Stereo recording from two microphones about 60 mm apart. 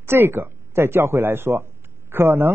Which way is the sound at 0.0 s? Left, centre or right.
Right.